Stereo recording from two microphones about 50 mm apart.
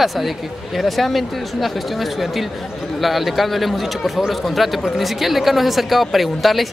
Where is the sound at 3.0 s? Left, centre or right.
Centre.